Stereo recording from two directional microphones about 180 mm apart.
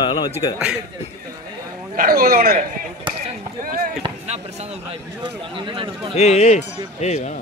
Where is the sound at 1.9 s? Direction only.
55° right (ahead or behind).